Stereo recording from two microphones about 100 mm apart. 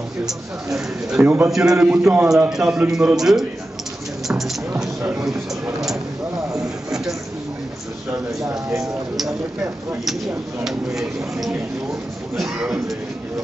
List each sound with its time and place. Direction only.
1.2 s a man's voice: 25° right (ahead or behind)
1.5 s a man's voice: 5° right (ahead or behind)
1.8 s a man's voice: 20° right (ahead or behind)
2.5 s a man's voice: 5° right (ahead or behind)
4.3 s music: 5° right (ahead or behind)
10.6 s a man's voice: 5° right (ahead or behind)